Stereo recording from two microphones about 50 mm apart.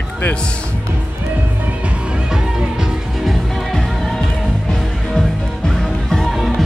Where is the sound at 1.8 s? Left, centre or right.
Right.